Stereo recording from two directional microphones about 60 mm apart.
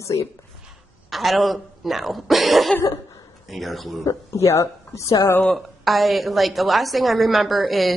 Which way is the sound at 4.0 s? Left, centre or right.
Left.